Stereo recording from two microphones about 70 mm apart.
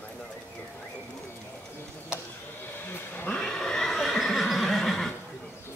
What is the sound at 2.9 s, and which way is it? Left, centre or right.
Roaring cats, left.